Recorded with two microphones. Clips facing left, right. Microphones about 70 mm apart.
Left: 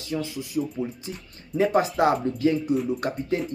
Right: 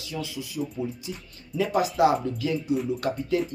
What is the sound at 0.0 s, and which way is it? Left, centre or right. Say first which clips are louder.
Speech: left 4 dB; left.